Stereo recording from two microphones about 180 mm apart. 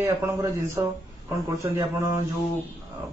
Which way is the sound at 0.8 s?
20° right (ahead or behind).